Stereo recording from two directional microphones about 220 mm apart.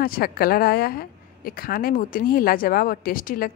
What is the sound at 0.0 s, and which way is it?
A woman's voice, 40° left (ahead or behind).